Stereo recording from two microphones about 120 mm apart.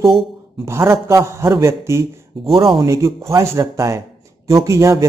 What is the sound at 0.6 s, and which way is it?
Speech, 20° right (ahead or behind).